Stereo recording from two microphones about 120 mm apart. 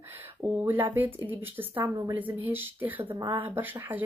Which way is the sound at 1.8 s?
30° right (ahead or behind).